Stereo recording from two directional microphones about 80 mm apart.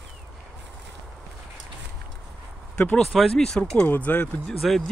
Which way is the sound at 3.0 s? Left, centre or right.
Centre.